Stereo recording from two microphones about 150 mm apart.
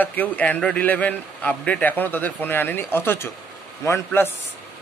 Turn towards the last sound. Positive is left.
turn(degrees=15)  # may be behind; listen again after turning